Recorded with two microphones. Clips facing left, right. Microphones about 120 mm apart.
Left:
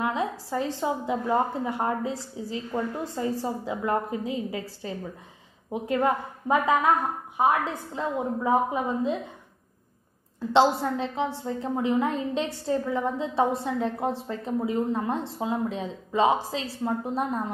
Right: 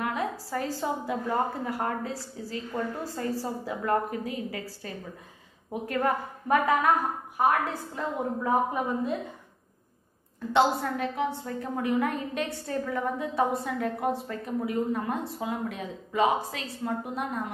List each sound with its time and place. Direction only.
0.0 s a woman's voice: 25° left (ahead or behind)
10.5 s a woman's voice: 25° left (ahead or behind)